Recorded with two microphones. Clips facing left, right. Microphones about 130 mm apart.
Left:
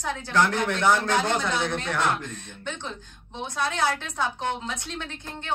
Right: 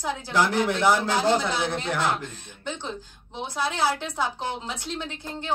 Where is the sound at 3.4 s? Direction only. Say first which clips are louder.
Right 1 dB; 10° right (ahead or behind).